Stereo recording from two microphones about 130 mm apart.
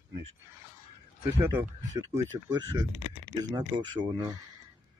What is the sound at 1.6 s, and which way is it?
Speech, 25° right (ahead or behind).